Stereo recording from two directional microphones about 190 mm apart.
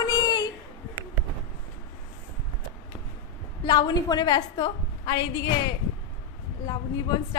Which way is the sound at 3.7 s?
20° left (ahead or behind).